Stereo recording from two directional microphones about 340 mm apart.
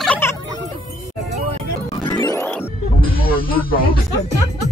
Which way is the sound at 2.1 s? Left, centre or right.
Centre.